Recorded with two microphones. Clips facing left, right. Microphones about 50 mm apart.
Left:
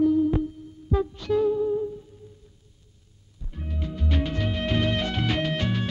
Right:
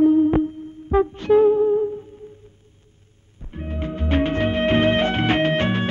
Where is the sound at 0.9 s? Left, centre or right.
Right.